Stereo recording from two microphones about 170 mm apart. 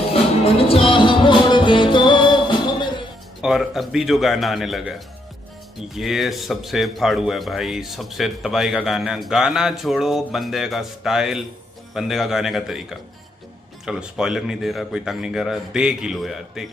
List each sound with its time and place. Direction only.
0.1 s music: 35° left (ahead or behind)
3.3 s a man's voice: centre (ahead or behind)
5.9 s a man's voice: centre (ahead or behind)
13.8 s a man's voice: 5° right (ahead or behind)